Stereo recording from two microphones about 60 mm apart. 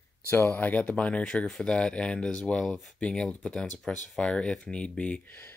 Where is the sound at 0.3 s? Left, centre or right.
Left; by 3.6 s centre.